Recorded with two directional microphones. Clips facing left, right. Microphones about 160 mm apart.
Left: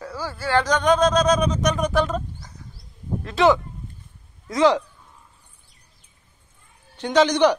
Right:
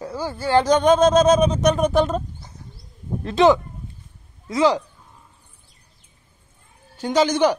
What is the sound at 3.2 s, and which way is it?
Speech, 20° right (ahead or behind).